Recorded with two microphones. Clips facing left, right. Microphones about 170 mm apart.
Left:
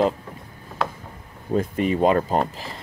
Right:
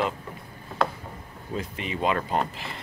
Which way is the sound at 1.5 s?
45° left (ahead or behind).